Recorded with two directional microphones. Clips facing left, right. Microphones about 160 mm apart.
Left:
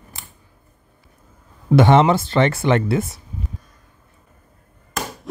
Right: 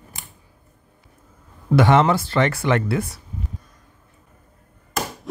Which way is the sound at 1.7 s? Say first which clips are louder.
Left 2 dB; 25° left (ahead or behind).